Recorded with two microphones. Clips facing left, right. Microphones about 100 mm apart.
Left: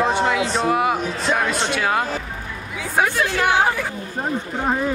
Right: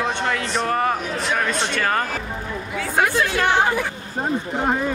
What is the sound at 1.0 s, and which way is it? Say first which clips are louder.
Speech: left 2 dB; 35° left (ahead or behind).